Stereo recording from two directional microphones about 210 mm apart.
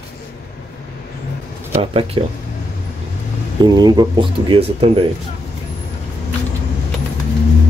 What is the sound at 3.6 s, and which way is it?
Speech, 20° right (ahead or behind).